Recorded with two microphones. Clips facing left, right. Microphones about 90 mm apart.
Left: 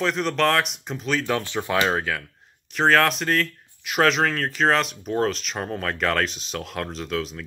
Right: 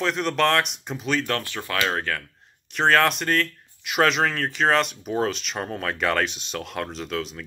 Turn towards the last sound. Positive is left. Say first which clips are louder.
# left 1 dB
turn(degrees=0)  # may be behind; listen again after turning